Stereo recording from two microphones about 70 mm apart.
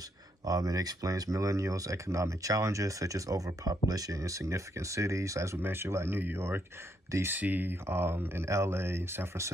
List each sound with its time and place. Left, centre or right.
0.5 s speech: right
5.6 s speech: right
7.2 s speech: right
7.8 s speech: right